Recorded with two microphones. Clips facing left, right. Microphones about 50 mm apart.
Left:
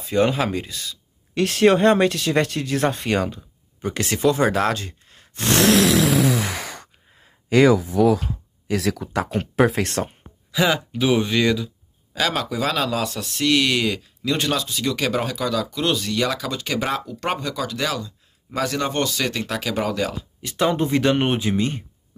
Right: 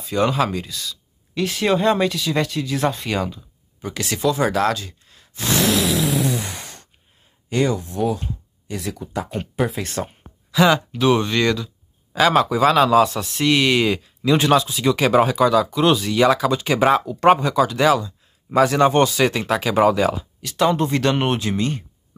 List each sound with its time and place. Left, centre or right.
0.0 s speech: left
1.3 s speech: left
5.7 s a sound: left
8.3 s speech: left
9.7 s speech: left
10.5 s speech: centre
12.1 s a man's voice: centre
20.4 s speech: centre